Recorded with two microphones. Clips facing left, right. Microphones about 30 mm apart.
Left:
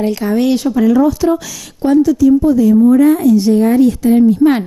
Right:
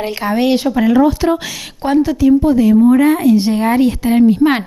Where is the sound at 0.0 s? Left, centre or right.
Right.